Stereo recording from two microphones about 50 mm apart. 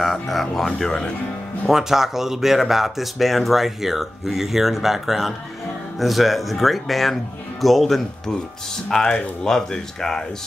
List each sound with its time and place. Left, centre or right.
0.0 s speech: centre
1.7 s speech: centre
8.8 s speech: centre